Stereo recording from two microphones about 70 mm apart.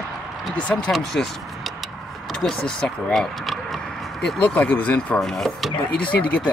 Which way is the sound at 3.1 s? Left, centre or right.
Centre.